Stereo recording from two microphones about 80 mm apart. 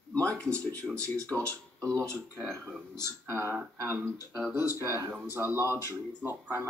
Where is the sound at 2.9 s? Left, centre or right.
Right.